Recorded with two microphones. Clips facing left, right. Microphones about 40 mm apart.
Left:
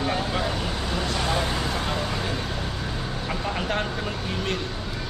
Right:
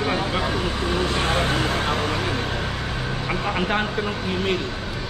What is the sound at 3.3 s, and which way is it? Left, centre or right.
Speech, right.